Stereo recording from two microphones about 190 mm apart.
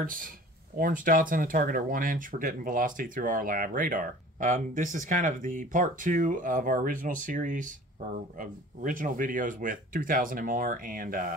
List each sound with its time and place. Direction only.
0.0 s speech: 45° right (ahead or behind)